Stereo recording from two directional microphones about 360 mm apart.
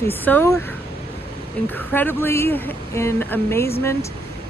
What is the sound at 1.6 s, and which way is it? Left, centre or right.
Speech, centre.